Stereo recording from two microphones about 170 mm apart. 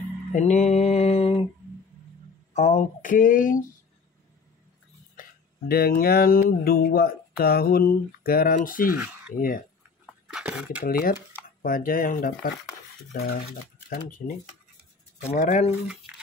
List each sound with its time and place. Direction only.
0.3 s mantra: 40° left (ahead or behind)
2.5 s speech: 45° left (ahead or behind)
5.7 s speech: 65° left (ahead or behind)
10.0 s a sound: 5° right (ahead or behind)
10.8 s speech: 60° left (ahead or behind)
13.8 s speech: 50° left (ahead or behind)
15.3 s speech: 45° left (ahead or behind)